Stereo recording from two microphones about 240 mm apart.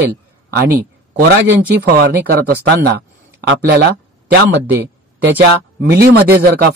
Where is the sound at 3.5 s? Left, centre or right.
Right.